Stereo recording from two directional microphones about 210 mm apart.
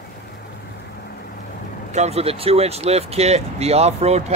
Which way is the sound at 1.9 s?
30° right (ahead or behind).